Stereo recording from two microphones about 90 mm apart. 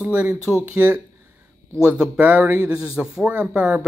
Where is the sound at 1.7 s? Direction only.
10° right (ahead or behind).